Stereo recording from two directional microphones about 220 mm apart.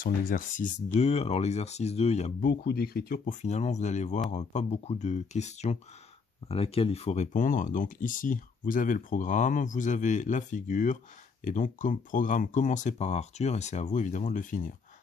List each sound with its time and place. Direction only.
0.0 s speech: 35° left (ahead or behind)
2.5 s speech: 45° left (ahead or behind)